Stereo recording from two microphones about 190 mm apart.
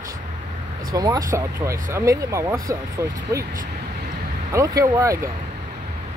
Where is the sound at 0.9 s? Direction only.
20° right (ahead or behind).